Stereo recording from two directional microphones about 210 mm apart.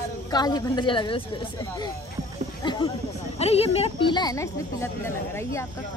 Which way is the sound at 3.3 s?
30° left (ahead or behind).